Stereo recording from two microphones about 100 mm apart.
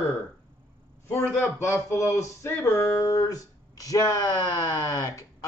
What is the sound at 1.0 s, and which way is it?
A man's voice, 25° left (ahead or behind).